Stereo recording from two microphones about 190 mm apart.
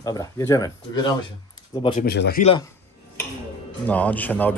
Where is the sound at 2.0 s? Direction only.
55° left (ahead or behind).